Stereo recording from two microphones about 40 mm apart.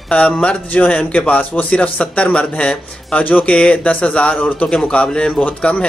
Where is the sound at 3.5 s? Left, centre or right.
Left.